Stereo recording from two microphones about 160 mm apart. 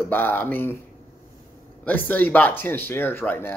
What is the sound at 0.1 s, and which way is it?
Speech, 10° left (ahead or behind).